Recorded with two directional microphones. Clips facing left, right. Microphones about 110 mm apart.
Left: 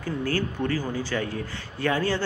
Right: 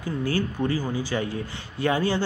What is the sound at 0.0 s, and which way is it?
Speech, 15° right (ahead or behind).